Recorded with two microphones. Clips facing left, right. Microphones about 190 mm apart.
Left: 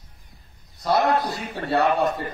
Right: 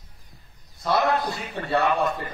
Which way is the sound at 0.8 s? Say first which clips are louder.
Left 2 dB; 45° left (ahead or behind).